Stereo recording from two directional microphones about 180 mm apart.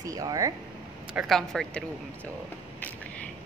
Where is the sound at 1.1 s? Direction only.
Centre (ahead or behind).